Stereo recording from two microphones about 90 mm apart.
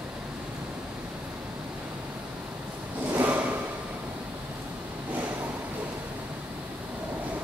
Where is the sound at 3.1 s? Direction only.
20° right (ahead or behind).